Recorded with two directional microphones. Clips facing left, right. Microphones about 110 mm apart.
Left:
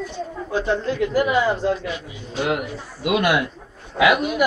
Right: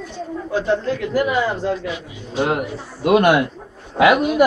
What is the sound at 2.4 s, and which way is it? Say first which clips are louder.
A man's voice: right 3 dB; 35° right (ahead or behind).